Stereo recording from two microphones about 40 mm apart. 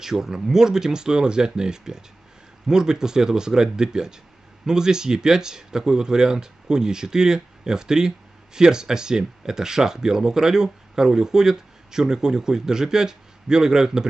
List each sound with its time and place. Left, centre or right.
0.0 s speech: centre